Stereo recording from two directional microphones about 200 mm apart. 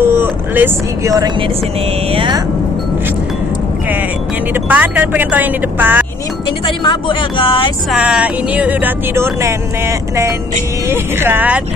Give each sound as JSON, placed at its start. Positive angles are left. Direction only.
{"t": 0.0, "sound": "speech", "side_deg": -10}
{"t": 4.6, "sound": "speech", "side_deg": -5}
{"t": 6.6, "sound": "speech", "side_deg": 25}
{"t": 7.9, "sound": "speech", "side_deg": -5}